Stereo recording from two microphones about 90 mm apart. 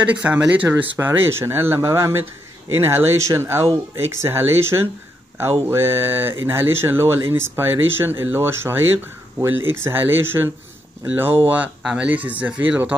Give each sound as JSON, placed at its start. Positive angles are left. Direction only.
{"t": 0.0, "sound": "speech", "side_deg": -15}
{"t": 0.9, "sound": "speech", "side_deg": -30}